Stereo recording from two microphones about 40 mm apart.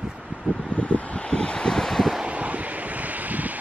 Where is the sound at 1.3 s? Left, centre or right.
Left.